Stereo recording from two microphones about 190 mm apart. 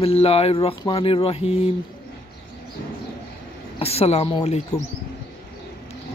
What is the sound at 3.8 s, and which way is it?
Speech, 30° left (ahead or behind).